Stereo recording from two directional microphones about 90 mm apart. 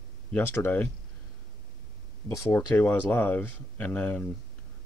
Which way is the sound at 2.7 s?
20° left (ahead or behind).